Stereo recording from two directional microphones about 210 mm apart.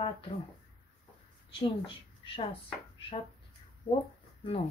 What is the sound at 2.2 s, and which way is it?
Speech, 25° left (ahead or behind).